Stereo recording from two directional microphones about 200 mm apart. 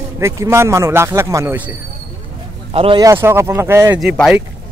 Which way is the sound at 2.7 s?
25° right (ahead or behind).